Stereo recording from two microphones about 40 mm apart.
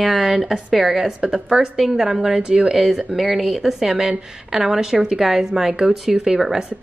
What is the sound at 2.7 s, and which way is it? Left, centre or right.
A woman's voice, centre.